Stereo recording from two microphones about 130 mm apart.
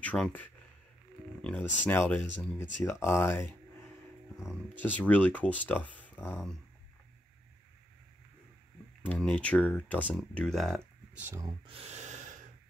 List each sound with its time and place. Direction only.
0.0 s speech: 10° left (ahead or behind)
4.7 s speech: 15° left (ahead or behind)
9.1 s speech: 10° left (ahead or behind)
11.1 s speech: 15° right (ahead or behind)
11.4 s gasp: 45° right (ahead or behind); by 12.4 s 70° right (ahead or behind)